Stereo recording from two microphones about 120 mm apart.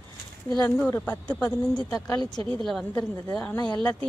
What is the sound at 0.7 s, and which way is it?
Speech, 15° left (ahead or behind).